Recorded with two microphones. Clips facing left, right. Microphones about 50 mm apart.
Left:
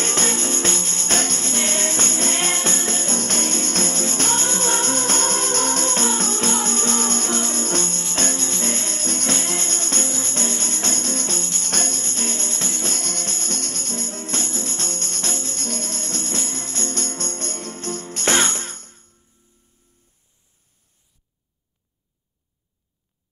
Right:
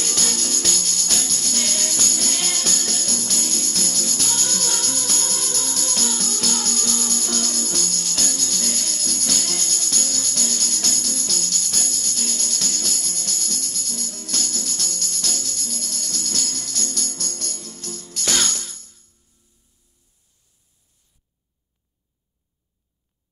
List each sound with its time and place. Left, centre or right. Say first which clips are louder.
0.0 s music: left 4 dB; left
12.9 s music: left 3 dB; left